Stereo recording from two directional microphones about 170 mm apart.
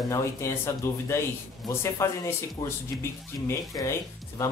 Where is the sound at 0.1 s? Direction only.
15° left (ahead or behind).